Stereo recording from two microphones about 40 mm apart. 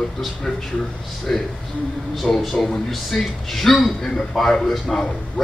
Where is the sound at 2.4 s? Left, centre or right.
Centre.